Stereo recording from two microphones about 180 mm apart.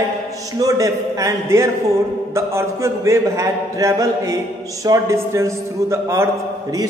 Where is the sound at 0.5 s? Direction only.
20° right (ahead or behind).